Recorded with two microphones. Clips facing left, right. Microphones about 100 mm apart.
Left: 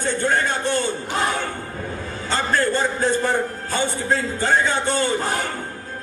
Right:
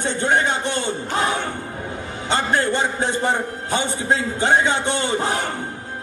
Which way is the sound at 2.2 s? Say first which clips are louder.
Right 1 dB; 20° right (ahead or behind).